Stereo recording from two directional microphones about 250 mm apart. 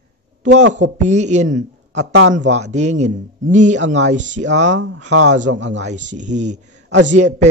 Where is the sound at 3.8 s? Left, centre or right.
Right.